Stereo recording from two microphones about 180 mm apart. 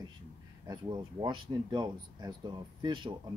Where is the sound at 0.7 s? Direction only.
20° right (ahead or behind).